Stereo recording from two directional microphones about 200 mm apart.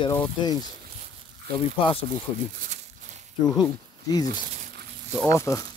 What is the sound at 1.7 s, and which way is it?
Speech, 25° left (ahead or behind).